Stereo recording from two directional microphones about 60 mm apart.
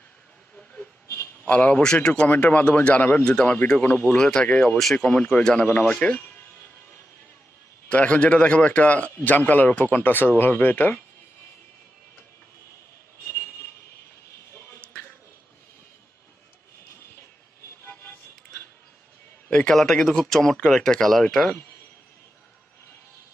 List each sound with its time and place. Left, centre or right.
1.0 s a sound: left
1.5 s a man's voice: left
2.2 s a man's voice: left
3.3 s speech: centre
3.5 s a man's voice: left
4.2 s speech: centre
5.7 s a man's voice: left
7.9 s a man's voice: left
17.8 s vehicle: left
19.7 s speech: centre